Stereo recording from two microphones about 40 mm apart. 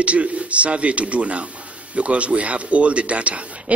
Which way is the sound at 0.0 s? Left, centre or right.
Right.